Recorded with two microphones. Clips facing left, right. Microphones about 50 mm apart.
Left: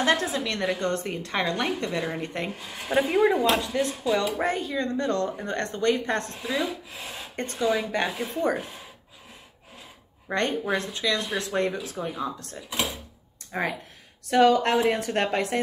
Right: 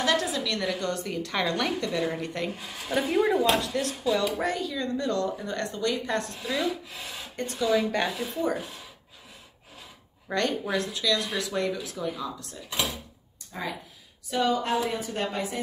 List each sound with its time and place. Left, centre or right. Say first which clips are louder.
0.0 s speech: left 2 dB; left
6.4 s rub: even; centre
8.4 s speech: left 3 dB; left
10.3 s speech: left 1 dB; left
13.5 s speech: left 6 dB; left
14.3 s speech: left 6 dB; left